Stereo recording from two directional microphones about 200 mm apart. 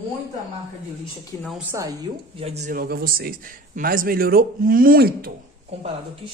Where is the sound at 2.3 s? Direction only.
30° right (ahead or behind).